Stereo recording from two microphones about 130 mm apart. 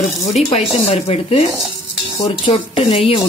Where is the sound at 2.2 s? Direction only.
35° left (ahead or behind).